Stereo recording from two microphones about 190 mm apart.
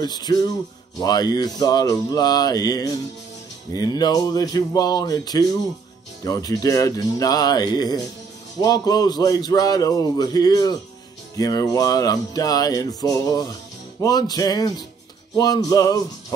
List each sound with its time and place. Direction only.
0.0 s music: 20° left (ahead or behind)